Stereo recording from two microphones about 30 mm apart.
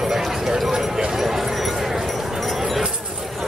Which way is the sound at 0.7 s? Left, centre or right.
Centre.